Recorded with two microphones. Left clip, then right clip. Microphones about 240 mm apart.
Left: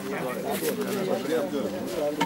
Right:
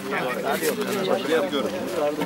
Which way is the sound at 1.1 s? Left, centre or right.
Centre.